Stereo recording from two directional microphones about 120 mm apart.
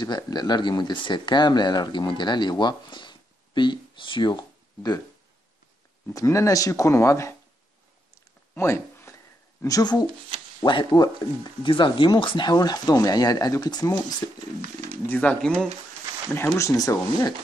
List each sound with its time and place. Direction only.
0.0 s speech: 35° left (ahead or behind)
6.1 s speech: 25° left (ahead or behind)
8.1 s a sound: 25° left (ahead or behind)
9.6 s speech: 30° left (ahead or behind)
15.0 s speech: 10° left (ahead or behind)
16.3 s speech: 20° left (ahead or behind)